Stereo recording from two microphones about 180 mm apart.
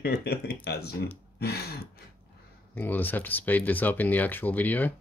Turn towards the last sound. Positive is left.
turn(degrees=10)  # may be behind; listen again after turning